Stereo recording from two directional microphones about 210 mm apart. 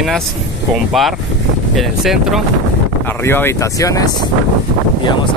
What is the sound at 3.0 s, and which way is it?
Speech, 10° left (ahead or behind).